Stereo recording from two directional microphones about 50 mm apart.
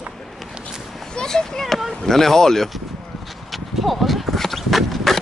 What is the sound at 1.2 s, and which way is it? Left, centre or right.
Speech, centre.